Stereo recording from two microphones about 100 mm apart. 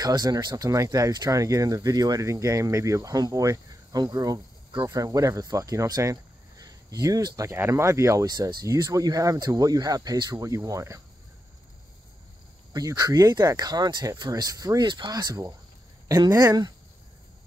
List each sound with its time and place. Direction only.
0.0 s speech: 40° right (ahead or behind)
8.3 s speech: 45° right (ahead or behind)
8.6 s speech: 35° right (ahead or behind)
12.7 s speech: 40° right (ahead or behind)